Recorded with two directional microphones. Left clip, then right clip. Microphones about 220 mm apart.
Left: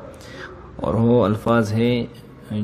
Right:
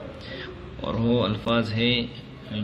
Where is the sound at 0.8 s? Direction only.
45° left (ahead or behind).